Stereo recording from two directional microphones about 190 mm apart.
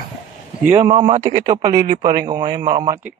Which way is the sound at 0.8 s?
25° right (ahead or behind).